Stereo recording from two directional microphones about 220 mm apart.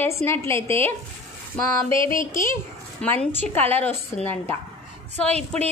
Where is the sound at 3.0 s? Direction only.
5° left (ahead or behind).